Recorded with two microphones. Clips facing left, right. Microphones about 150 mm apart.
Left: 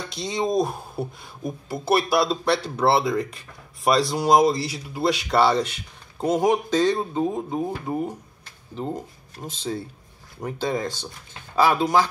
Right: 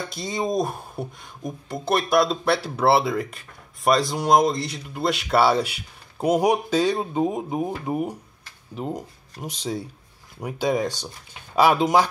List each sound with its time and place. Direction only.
0.1 s speech: centre (ahead or behind); by 12.1 s 20° right (ahead or behind)